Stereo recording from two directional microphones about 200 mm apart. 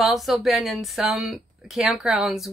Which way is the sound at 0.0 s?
Centre (ahead or behind).